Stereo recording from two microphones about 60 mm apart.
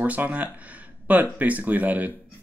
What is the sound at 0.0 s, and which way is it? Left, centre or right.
Speech, right.